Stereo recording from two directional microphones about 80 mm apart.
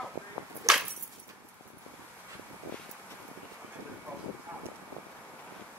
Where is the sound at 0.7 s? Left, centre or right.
Right.